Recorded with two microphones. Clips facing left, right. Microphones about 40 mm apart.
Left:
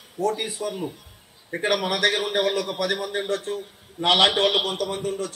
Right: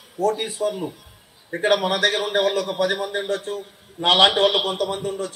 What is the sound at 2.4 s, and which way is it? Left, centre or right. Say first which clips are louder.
Speech: right 3 dB; centre.